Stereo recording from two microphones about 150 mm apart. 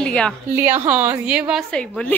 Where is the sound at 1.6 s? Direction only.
5° left (ahead or behind).